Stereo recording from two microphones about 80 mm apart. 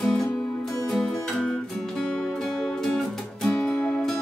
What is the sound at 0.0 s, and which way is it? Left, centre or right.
Music, centre.